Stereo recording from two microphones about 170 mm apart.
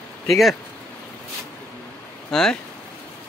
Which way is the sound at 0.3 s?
Centre (ahead or behind).